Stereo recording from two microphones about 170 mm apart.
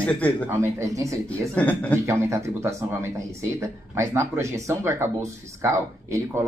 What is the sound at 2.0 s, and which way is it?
Speech, 15° right (ahead or behind).